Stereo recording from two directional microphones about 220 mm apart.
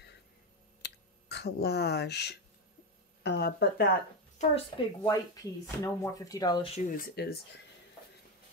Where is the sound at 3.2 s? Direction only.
45° left (ahead or behind).